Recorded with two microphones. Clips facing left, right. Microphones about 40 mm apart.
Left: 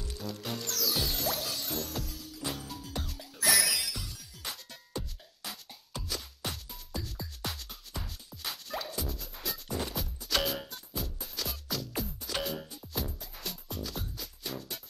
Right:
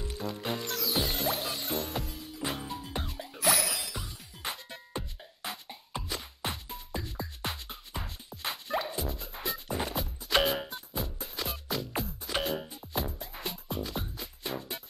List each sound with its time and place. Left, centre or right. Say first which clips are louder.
0.3 s music: right 3 dB; right
12.4 s music: right 4 dB; centre
12.6 s music: right 3 dB; right